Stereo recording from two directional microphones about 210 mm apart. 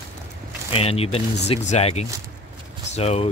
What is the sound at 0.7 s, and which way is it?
Speech, 30° left (ahead or behind).